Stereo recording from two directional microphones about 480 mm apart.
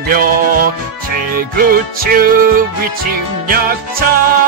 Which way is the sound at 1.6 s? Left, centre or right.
Centre.